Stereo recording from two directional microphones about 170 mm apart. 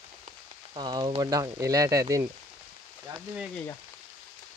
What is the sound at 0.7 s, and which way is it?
Speech, 25° right (ahead or behind).